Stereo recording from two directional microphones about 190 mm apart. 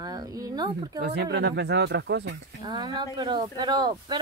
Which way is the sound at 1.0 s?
60° right (ahead or behind).